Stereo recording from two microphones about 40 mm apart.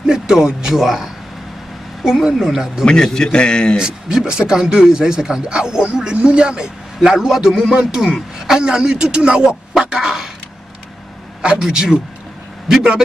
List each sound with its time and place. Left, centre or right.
0.0 s a man's voice: centre
2.8 s a man's voice: centre
3.7 s speech: centre
9.8 s a sound: centre
11.6 s speech: centre
12.6 s speech: centre